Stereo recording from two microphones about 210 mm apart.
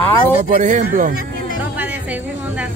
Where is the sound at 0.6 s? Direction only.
35° right (ahead or behind).